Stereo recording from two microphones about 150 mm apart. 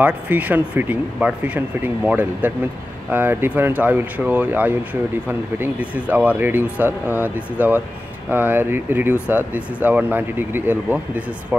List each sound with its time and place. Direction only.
0.0 s speech: 10° right (ahead or behind)